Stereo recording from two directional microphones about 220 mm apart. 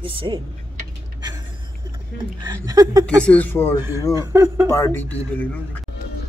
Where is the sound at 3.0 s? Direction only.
5° left (ahead or behind).